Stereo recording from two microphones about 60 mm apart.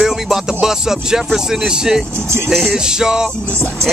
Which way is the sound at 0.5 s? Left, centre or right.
Centre.